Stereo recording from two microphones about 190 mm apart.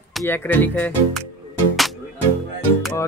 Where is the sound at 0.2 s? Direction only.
10° left (ahead or behind).